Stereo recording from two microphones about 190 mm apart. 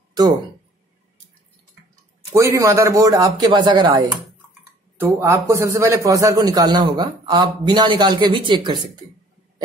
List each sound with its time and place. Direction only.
2.3 s a man's voice: 15° right (ahead or behind)